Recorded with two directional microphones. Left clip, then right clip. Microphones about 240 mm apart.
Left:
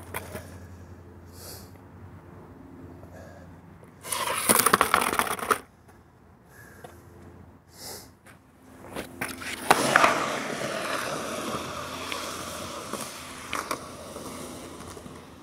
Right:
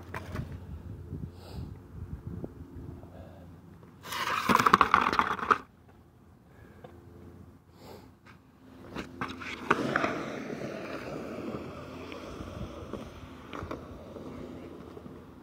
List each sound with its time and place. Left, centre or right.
4.0 s a sound: right
8.9 s biting: right
9.7 s skateboard: centre